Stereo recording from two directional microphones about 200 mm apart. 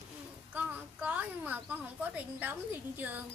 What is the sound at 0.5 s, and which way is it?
A woman's voice, 10° right (ahead or behind).